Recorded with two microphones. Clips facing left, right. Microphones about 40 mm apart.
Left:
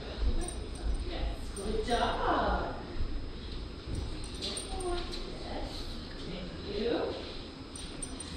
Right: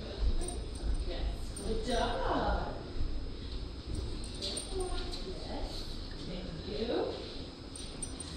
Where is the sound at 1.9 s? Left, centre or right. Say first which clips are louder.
Left 3 dB; left.